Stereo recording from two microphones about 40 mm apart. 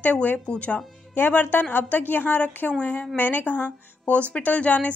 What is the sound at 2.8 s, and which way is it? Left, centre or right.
Speech, left.